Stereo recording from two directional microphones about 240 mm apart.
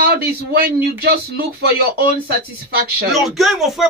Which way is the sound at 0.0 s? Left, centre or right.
Right.